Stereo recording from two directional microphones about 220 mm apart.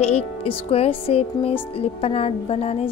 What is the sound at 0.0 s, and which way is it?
Speech, 25° left (ahead or behind).